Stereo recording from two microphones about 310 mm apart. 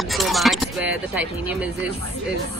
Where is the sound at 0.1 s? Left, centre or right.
Centre.